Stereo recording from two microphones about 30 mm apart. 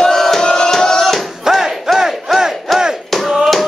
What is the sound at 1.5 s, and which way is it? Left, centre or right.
Battle cry, centre.